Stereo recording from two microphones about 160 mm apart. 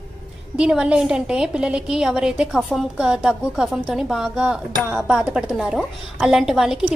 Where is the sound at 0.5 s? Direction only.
5° right (ahead or behind).